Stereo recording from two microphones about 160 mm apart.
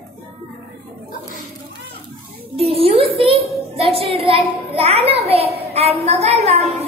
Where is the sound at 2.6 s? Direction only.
35° right (ahead or behind).